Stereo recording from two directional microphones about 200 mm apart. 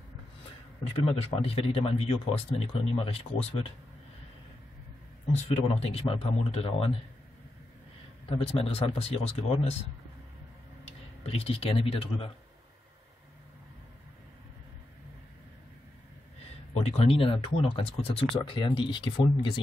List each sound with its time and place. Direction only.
0.9 s speech: 30° left (ahead or behind)
5.3 s speech: 30° left (ahead or behind)
8.3 s speech: 30° left (ahead or behind)
10.9 s speech: 30° left (ahead or behind)
16.7 s speech: 30° left (ahead or behind)